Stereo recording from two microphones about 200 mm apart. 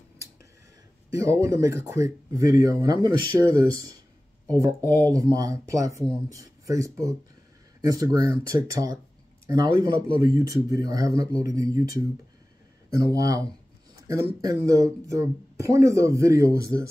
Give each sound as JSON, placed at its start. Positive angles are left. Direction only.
{"t": 1.2, "sound": "speech", "side_deg": -15}
{"t": 4.8, "sound": "speech", "side_deg": 10}
{"t": 5.1, "sound": "speech", "side_deg": -20}